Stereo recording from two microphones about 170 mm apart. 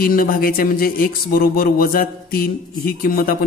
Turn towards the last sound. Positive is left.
turn(degrees=60)  # may be behind; listen again after turning